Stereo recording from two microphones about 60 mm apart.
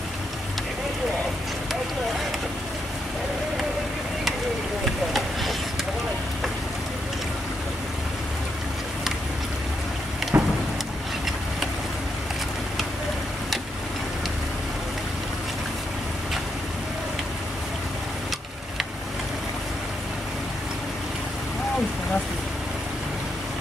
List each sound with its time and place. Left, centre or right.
4.8 s vehicle: centre
10.3 s vehicle: right